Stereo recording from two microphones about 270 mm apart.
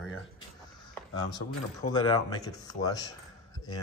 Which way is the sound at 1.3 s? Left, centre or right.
Centre.